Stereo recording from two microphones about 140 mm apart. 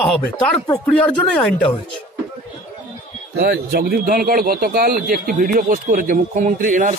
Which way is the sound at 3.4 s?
90° right.